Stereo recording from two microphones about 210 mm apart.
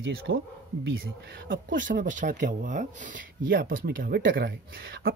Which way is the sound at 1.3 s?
45° right (ahead or behind).